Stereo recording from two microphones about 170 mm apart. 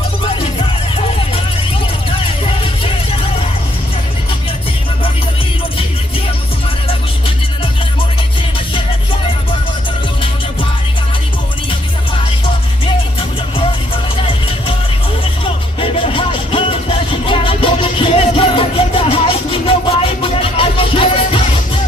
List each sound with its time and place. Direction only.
0.3 s music: 35° left (ahead or behind)
2.0 s vehicle: 30° left (ahead or behind)
15.4 s music: 30° left (ahead or behind)